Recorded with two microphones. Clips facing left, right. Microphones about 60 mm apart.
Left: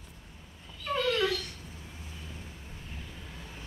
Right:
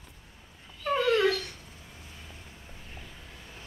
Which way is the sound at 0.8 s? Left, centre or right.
Right.